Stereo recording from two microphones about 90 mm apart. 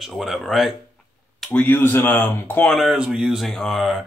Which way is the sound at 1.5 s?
25° left (ahead or behind).